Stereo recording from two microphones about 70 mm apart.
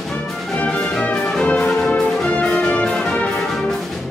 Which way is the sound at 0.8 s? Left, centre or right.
Centre.